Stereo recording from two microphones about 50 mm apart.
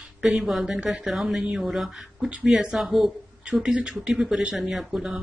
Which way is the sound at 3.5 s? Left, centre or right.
Centre.